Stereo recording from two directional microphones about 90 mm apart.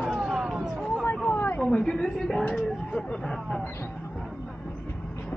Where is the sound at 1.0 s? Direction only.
15° left (ahead or behind).